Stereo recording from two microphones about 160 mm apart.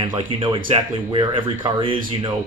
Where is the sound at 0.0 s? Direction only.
30° right (ahead or behind).